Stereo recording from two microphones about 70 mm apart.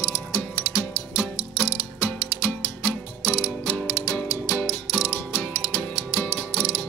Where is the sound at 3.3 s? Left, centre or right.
Centre.